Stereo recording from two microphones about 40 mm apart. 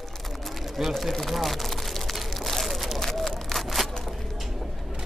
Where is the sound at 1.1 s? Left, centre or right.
Centre.